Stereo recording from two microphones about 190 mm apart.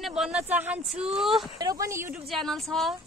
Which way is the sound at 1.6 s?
20° right (ahead or behind).